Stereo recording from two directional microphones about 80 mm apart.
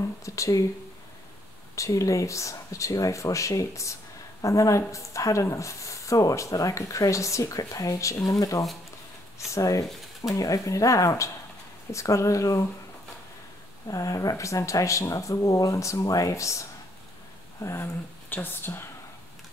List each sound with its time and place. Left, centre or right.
0.2 s speech: left
1.8 s speech: left
13.8 s speech: left
17.8 s speech: left